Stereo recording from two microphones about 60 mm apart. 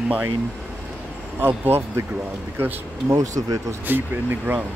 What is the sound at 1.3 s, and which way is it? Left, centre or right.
Speech, right.